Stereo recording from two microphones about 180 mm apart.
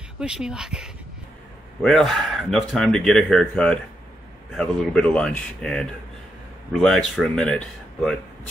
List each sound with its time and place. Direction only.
0.2 s speech: 5° right (ahead or behind)